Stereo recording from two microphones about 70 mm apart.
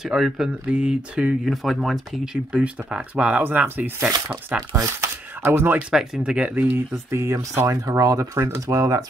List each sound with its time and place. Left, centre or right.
0.0 s speech: centre
1.4 s speech: centre
2.2 s speech: centre
3.4 s speech: right
5.4 s speech: right
5.8 s speech: centre
6.5 s speech: right
6.9 s speech: right